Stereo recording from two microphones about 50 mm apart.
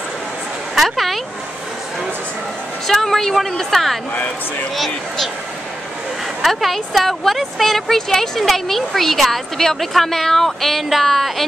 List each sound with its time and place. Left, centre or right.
0.7 s speech: centre
2.9 s a woman's voice: centre
4.1 s speech: left
4.7 s a woman's voice: centre
6.4 s a woman's voice: centre